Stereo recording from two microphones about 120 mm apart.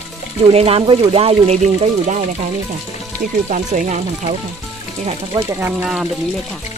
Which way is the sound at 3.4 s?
80° right.